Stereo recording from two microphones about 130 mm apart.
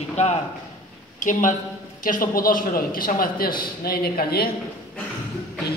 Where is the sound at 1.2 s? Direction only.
85° left.